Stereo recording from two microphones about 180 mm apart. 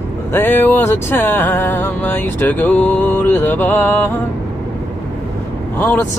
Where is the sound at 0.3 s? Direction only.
10° left (ahead or behind).